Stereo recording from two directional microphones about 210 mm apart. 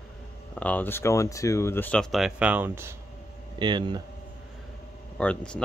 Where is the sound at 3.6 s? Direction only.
20° right (ahead or behind).